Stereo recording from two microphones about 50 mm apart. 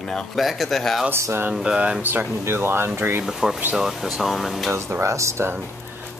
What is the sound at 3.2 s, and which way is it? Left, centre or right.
Speech, centre.